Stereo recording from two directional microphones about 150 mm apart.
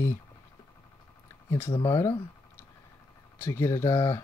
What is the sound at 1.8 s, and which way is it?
Speech, 20° left (ahead or behind).